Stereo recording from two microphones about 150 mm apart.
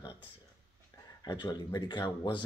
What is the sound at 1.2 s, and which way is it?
Speech, 30° left (ahead or behind).